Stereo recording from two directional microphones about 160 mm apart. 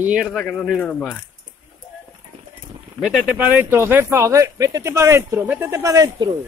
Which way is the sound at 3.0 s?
10° right (ahead or behind).